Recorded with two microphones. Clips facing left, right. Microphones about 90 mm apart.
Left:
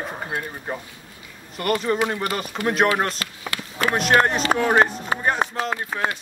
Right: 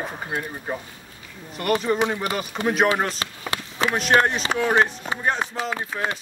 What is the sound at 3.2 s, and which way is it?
Speech, 30° right (ahead or behind).